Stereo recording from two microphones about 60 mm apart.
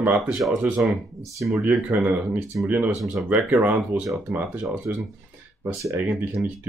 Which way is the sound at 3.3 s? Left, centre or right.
Right.